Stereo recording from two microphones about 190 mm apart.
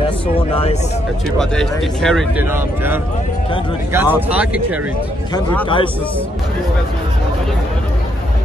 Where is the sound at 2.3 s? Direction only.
10° right (ahead or behind).